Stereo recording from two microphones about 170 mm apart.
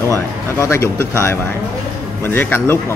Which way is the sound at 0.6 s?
15° left (ahead or behind).